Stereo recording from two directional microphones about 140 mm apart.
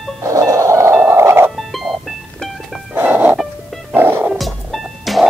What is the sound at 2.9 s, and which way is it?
Music, 15° right (ahead or behind).